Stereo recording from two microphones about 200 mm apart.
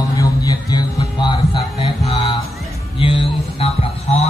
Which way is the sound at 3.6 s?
30° left (ahead or behind).